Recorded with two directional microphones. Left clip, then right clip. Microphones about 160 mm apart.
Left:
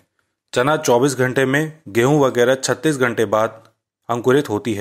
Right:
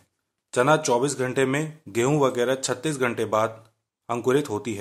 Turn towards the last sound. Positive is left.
turn(degrees=25)  # may be behind; listen again after turning